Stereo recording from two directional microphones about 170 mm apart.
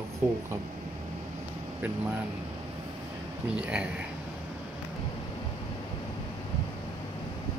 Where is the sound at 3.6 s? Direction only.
5° right (ahead or behind).